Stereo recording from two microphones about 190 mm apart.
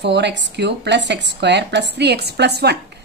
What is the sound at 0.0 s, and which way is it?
Speech, 65° right (ahead or behind).